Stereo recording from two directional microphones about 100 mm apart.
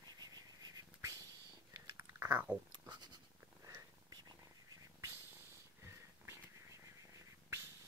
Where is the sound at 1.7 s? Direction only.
30° right (ahead or behind).